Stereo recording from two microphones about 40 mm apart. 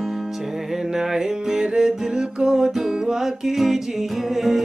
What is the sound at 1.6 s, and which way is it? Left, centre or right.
Music, centre.